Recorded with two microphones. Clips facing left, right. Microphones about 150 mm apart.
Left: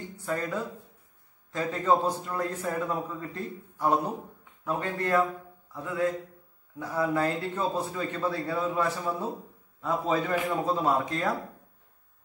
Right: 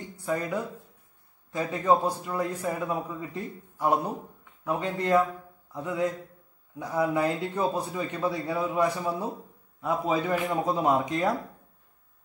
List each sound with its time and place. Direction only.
0.2 s a man's voice: 15° right (ahead or behind)
5.7 s mantra: 20° right (ahead or behind)
6.8 s a man's voice: 15° right (ahead or behind)